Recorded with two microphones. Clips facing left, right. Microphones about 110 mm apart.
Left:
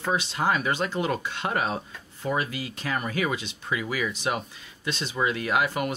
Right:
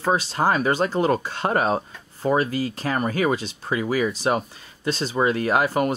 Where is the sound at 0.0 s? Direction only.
40° right (ahead or behind).